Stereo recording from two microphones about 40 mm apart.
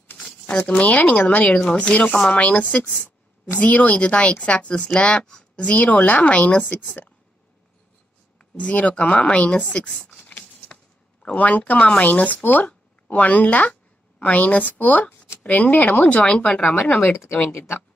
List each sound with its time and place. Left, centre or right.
0.2 s a sound: left
0.7 s speech: left
1.7 s speech: left
5.6 s speech: left
8.5 s speech: left
9.8 s speech: centre
11.3 s speech: left
15.7 s speech: left
16.2 s speech: left
17.0 s speech: left